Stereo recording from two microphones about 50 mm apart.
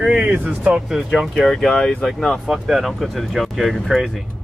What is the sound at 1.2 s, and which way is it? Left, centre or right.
Speech, centre.